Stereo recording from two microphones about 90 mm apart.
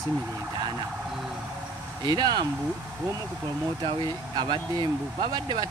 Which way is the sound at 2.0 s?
50° right (ahead or behind).